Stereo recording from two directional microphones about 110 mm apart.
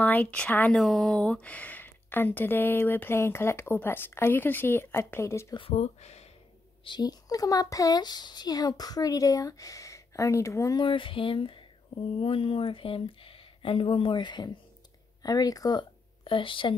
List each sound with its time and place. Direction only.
0.0 s speech: 15° left (ahead or behind)
0.7 s speech: centre (ahead or behind); by 5.5 s 25° left (ahead or behind)
5.6 s speech: 75° left (ahead or behind)
6.8 s speech: 40° left (ahead or behind)
10.8 s speech: 50° left (ahead or behind); by 15.8 s 35° left (ahead or behind)
16.3 s speech: 50° left (ahead or behind)